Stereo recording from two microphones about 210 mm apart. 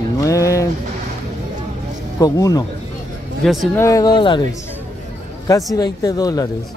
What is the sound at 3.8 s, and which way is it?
Speech, 15° left (ahead or behind).